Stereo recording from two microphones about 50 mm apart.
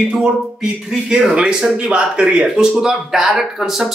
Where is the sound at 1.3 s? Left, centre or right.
Centre.